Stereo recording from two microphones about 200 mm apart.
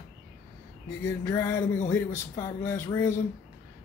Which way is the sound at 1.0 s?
15° left (ahead or behind).